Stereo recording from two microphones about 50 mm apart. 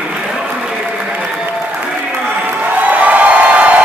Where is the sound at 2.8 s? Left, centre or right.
Right.